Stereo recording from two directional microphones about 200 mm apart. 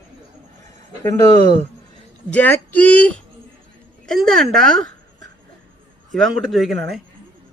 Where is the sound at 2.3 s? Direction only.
10° left (ahead or behind).